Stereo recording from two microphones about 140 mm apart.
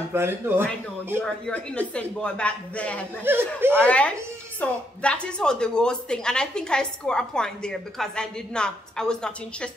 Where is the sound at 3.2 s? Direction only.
15° right (ahead or behind).